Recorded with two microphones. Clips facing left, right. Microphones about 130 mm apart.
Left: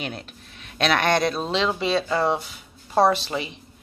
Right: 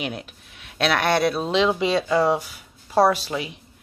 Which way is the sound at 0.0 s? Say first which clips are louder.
Right 2 dB; 10° right (ahead or behind).